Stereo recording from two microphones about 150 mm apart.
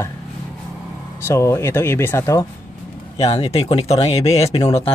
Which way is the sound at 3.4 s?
40° left (ahead or behind).